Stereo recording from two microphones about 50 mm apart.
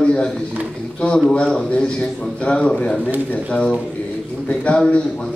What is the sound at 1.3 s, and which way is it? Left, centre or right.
A man's voice, left.